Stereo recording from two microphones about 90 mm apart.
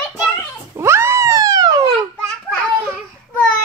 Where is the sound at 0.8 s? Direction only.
30° right (ahead or behind); by 1.8 s 45° right (ahead or behind).